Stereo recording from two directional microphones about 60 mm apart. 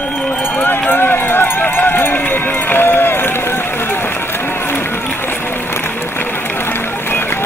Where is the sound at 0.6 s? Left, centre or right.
Left.